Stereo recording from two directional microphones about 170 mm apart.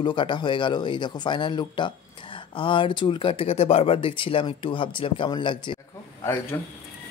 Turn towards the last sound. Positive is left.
turn(degrees=15)  # may be behind; listen again after turning